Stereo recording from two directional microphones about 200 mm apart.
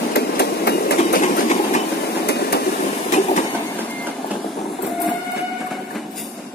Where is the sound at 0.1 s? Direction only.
55° left (ahead or behind).